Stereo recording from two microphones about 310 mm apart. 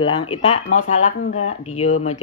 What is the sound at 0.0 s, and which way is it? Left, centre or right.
Speech, centre.